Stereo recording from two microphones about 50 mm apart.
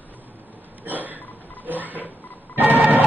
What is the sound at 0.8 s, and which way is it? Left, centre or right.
Hiccup, right.